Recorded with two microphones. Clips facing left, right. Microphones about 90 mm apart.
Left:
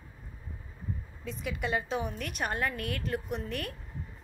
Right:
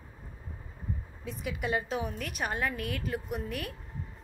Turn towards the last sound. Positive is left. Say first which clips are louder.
# even
turn(degrees=-5)  # may be behind; listen again after turning